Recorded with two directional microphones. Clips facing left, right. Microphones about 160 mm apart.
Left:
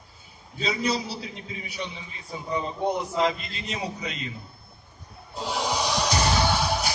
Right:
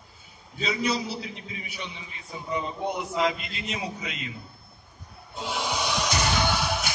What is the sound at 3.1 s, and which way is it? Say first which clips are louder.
Speech: left 1 dB; 35° left (ahead or behind).